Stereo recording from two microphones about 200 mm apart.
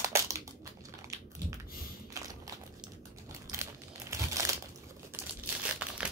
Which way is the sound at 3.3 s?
15° right (ahead or behind).